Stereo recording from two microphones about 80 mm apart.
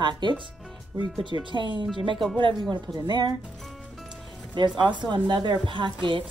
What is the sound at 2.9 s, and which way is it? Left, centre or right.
Speech, right.